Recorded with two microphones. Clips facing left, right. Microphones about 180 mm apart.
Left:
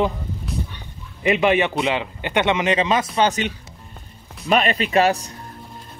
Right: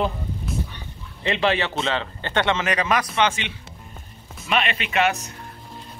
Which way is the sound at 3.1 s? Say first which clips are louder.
Left 3 dB; 40° left (ahead or behind).